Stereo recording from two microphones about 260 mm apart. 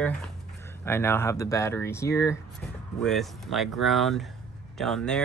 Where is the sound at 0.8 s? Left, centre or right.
Centre.